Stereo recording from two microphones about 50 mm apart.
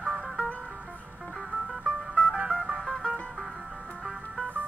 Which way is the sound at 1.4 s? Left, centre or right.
Centre.